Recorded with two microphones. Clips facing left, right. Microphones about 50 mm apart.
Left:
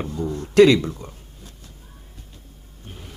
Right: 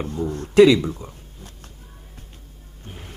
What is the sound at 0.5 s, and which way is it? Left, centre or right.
Speech, centre.